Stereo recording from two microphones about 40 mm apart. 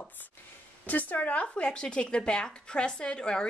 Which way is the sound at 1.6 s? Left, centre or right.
Left.